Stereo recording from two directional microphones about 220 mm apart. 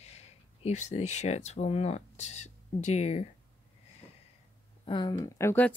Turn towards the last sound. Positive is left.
turn(degrees=10)  # may be behind; listen again after turning